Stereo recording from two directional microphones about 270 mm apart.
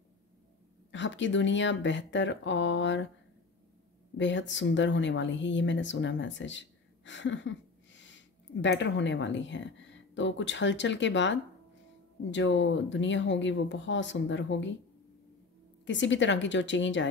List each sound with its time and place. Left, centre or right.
0.9 s speech: left
4.2 s a woman's voice: left
15.8 s speech: left